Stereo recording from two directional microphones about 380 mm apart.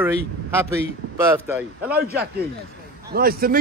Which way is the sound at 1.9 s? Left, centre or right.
Right.